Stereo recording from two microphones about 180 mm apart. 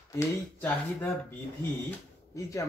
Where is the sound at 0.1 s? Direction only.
10° left (ahead or behind).